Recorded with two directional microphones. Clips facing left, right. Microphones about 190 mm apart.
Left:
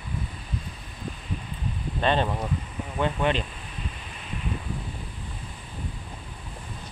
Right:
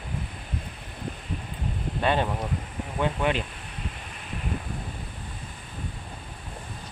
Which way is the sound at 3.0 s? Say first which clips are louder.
Left 1 dB; 10° right (ahead or behind).